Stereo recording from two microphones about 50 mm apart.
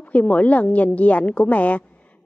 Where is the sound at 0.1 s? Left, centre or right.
Left.